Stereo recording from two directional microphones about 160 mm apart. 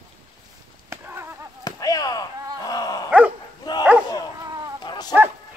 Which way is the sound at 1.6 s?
25° left (ahead or behind).